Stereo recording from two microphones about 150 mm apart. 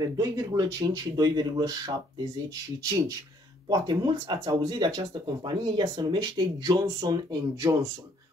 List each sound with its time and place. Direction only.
0.0 s speech: 25° right (ahead or behind)